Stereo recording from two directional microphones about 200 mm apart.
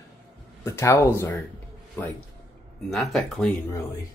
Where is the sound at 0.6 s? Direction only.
15° left (ahead or behind).